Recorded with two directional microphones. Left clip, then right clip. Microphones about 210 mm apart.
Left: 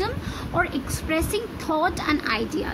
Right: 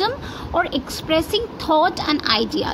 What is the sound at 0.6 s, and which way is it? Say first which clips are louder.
A child's voice: right 4 dB; 15° right (ahead or behind).